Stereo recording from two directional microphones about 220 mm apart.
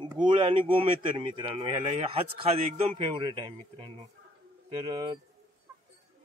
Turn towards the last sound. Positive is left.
turn(degrees=-20)  # may be behind; listen again after turning